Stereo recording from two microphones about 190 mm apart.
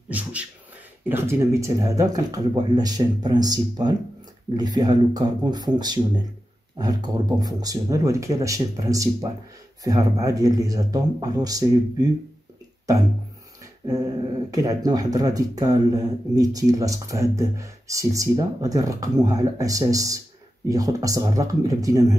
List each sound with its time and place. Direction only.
0.1 s beatboxing: 5° right (ahead or behind)
1.0 s speech: 10° right (ahead or behind)
13.8 s speech: 20° right (ahead or behind)